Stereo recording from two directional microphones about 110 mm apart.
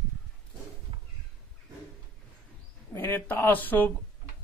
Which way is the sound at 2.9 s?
20° left (ahead or behind).